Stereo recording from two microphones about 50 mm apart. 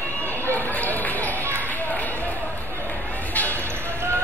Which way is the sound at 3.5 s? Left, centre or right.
Right.